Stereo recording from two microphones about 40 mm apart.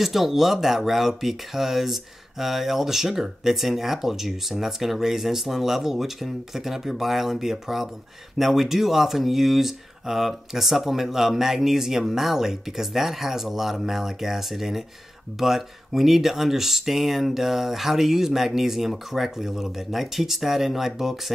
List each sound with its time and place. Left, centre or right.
0.0 s speech: centre